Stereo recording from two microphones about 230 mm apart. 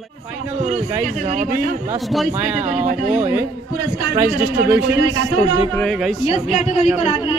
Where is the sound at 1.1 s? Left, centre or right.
Right.